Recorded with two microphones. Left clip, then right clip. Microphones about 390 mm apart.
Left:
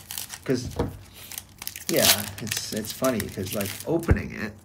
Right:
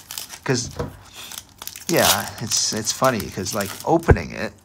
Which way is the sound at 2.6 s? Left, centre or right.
Centre.